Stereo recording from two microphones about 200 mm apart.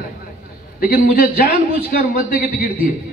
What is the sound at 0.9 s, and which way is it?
A man's voice, 45° left (ahead or behind).